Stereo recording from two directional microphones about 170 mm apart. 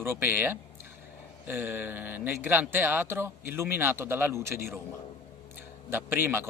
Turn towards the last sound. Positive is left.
turn(degrees=-15)  # may be behind; listen again after turning